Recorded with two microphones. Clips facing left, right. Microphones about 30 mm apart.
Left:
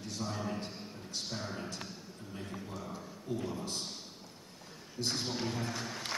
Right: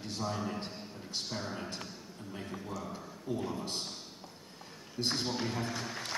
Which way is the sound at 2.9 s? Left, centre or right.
Right.